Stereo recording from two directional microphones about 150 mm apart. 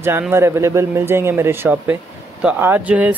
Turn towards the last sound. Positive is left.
turn(degrees=-10)  # may be behind; listen again after turning